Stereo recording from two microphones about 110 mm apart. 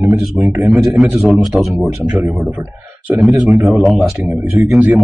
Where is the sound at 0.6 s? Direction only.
5° right (ahead or behind).